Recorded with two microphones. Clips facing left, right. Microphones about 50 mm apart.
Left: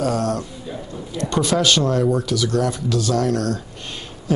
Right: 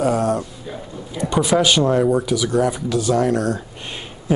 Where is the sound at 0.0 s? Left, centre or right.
Centre.